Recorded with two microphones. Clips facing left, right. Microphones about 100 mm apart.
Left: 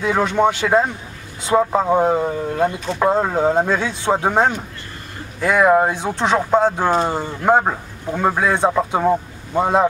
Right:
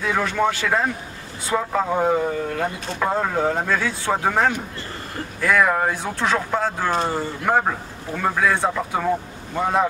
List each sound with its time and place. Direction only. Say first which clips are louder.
0.0 s speech: left 4 dB; 20° left (ahead or behind)